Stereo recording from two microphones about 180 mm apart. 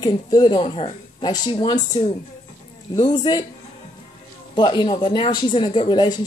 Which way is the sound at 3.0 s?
25° left (ahead or behind).